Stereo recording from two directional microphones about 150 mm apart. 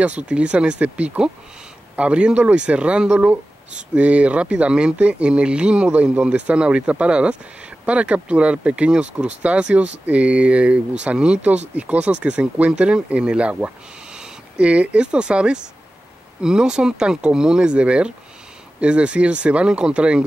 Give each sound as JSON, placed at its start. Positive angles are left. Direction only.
{"t": 0.0, "sound": "speech", "side_deg": -10}